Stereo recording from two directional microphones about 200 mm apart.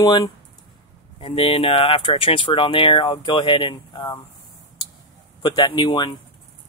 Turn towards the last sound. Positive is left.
turn(degrees=20)  # may be behind; listen again after turning